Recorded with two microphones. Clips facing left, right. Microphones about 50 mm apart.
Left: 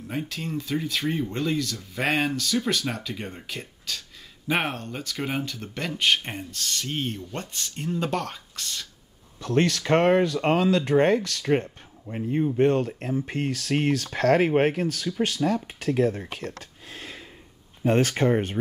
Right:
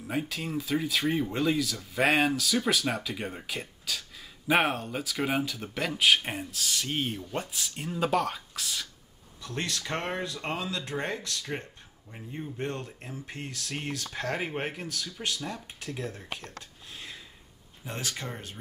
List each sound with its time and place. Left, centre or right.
0.0 s speech: centre
9.4 s speech: left
16.3 s a sound: left
17.8 s speech: left